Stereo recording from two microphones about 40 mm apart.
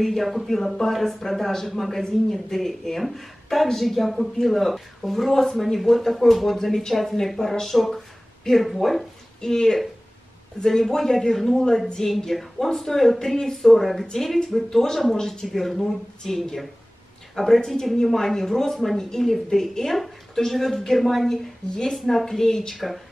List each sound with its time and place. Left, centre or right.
0.0 s a woman's voice: centre
15.4 s a woman's voice: centre
21.6 s a woman's voice: centre